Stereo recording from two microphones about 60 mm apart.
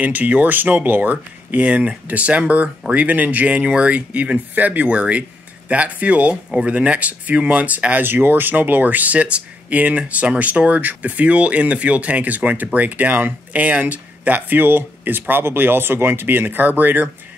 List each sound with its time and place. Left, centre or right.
0.0 s speech: right